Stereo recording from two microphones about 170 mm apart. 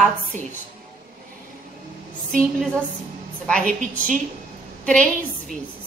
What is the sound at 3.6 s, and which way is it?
Speech, 50° right (ahead or behind).